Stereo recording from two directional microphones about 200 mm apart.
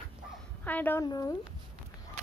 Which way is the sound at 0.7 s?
10° left (ahead or behind).